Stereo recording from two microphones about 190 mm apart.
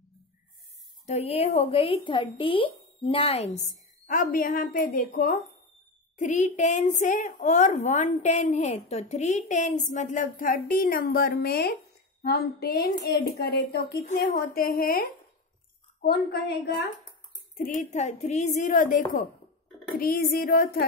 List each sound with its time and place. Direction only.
1.0 s a woman's voice: 35° left (ahead or behind); by 13.9 s 60° left (ahead or behind)
14.0 s a woman's voice: 45° left (ahead or behind); by 16.7 s 60° left (ahead or behind)
17.6 s a woman's voice: 40° left (ahead or behind)